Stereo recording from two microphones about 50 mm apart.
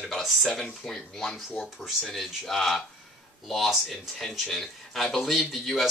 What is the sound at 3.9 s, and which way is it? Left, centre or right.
Speech, centre.